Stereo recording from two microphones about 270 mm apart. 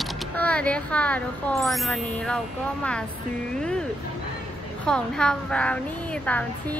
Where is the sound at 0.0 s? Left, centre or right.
Centre.